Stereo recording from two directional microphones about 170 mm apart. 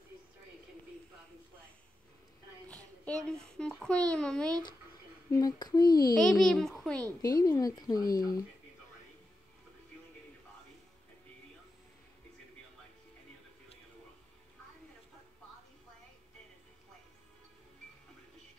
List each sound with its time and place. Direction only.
3.1 s a child's voice: 5° left (ahead or behind)
5.3 s speech: 25° left (ahead or behind)
6.1 s a child's voice: 5° left (ahead or behind)
7.2 s speech: 20° left (ahead or behind)